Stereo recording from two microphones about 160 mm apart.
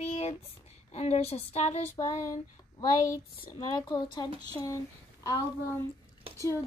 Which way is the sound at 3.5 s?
25° left (ahead or behind).